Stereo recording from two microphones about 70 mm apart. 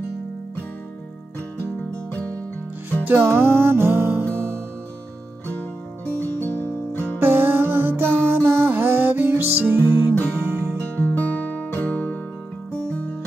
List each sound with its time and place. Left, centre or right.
3.1 s music: right
5.5 s music: left
7.2 s music: right
10.8 s music: left